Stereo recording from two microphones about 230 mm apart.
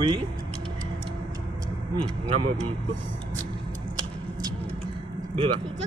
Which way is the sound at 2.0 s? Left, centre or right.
Right.